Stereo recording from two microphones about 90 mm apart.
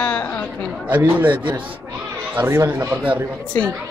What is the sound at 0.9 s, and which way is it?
Speech, 20° right (ahead or behind).